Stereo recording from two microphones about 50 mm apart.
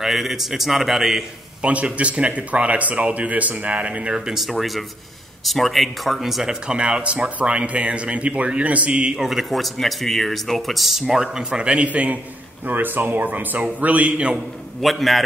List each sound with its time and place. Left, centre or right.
0.0 s speech: centre
1.6 s speech: right
4.4 s speech: centre; by 9.2 s right
9.2 s speech: centre
11.1 s speech: centre
12.6 s speech: right
14.8 s speech: centre